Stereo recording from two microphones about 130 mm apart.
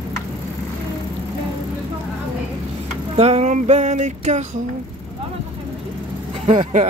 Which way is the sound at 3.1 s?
55° right (ahead or behind).